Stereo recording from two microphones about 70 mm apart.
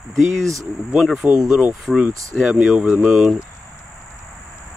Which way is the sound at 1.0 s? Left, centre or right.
Centre.